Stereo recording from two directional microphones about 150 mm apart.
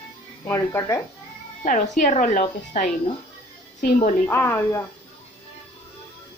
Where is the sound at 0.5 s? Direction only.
20° left (ahead or behind).